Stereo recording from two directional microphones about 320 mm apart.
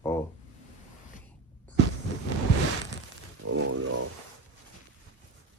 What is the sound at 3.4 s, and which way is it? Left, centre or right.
Wild animals, right.